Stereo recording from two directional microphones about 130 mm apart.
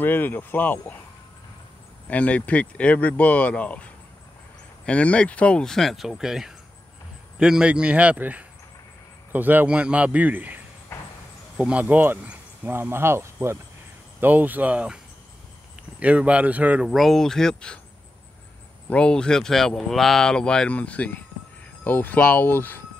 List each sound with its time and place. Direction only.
0.0 s speech: 15° left (ahead or behind)
2.0 s speech: 10° left (ahead or behind)
4.8 s a man's voice: 10° left (ahead or behind); by 15.0 s 10° right (ahead or behind)
16.0 s speech: 10° right (ahead or behind); by 17.7 s 5° left (ahead or behind)
18.9 s speech: 10° left (ahead or behind)